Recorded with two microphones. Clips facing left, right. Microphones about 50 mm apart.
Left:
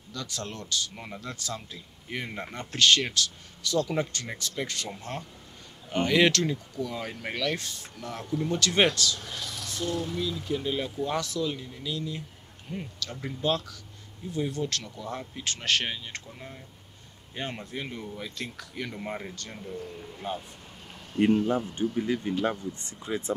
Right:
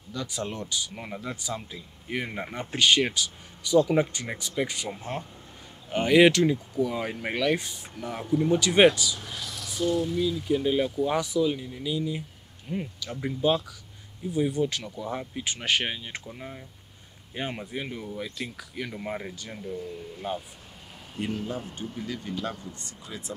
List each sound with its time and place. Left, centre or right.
0.1 s speech: centre
19.6 s speech: centre
21.9 s speech: left